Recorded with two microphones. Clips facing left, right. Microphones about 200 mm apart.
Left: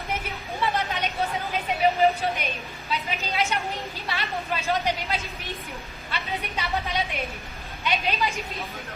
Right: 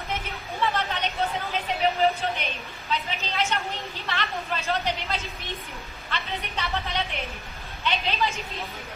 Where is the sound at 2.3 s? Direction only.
10° left (ahead or behind).